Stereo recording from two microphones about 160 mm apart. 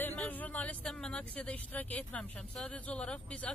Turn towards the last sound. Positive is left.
turn(degrees=5)  # may be behind; listen again after turning